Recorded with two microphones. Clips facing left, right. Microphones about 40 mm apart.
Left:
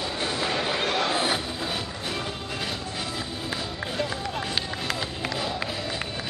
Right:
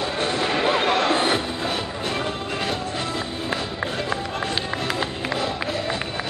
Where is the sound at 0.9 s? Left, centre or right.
Centre.